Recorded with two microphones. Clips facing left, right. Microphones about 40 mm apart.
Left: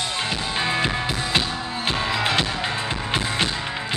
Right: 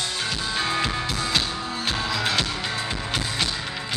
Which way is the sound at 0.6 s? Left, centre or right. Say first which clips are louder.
Left 2 dB; left.